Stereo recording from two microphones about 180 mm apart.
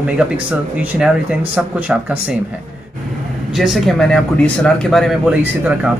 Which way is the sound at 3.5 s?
Centre (ahead or behind).